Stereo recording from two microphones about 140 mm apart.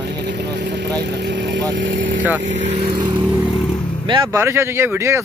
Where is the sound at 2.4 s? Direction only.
60° right (ahead or behind).